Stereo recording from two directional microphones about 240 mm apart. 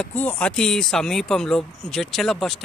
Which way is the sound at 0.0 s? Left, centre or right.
Centre.